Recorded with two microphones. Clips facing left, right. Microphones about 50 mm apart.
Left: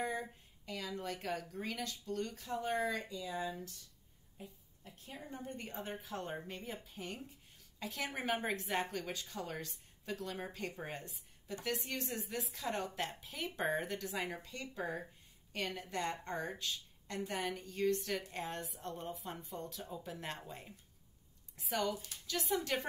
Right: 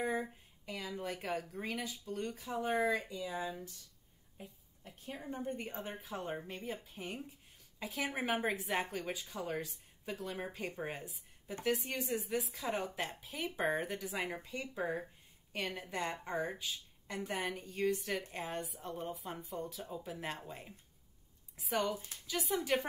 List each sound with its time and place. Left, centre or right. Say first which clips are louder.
0.0 s speech: right 3 dB; centre
3.1 s speech: right 2 dB; right
3.3 s speech: left 2 dB; centre
4.4 s a woman's voice: even; right
5.6 s a woman's voice: right 1 dB; centre
21.8 s speech: even; right
22.4 s a woman's voice: right 2 dB; centre